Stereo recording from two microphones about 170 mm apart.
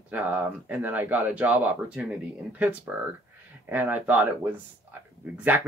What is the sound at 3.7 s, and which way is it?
Speech, 10° right (ahead or behind).